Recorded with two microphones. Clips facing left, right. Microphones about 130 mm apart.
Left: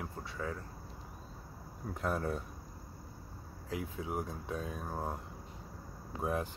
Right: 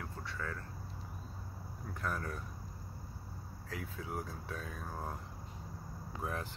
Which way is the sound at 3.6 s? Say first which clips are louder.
Left 5 dB; 20° left (ahead or behind).